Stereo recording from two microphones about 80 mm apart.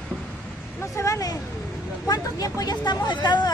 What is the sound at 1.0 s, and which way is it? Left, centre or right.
Speech, left.